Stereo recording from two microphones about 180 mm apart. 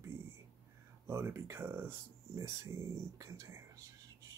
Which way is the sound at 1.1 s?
15° right (ahead or behind).